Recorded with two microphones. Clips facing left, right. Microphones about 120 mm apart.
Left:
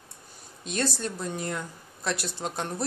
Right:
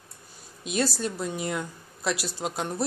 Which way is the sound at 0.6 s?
10° right (ahead or behind).